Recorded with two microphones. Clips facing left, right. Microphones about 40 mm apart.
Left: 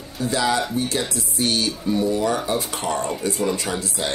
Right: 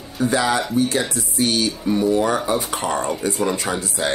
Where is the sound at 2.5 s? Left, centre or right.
Right.